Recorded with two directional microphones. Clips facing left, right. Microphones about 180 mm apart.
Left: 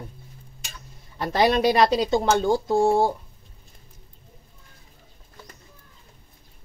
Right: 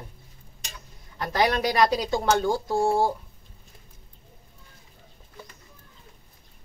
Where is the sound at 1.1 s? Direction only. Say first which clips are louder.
Left 4 dB; 25° left (ahead or behind).